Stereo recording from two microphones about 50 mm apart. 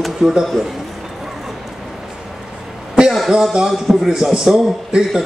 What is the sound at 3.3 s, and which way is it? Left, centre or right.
Speech, centre.